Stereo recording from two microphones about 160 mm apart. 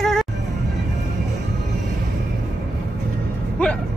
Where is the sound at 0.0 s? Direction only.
Centre (ahead or behind).